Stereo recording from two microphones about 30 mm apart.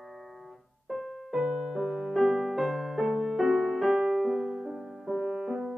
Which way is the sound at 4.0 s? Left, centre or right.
Centre.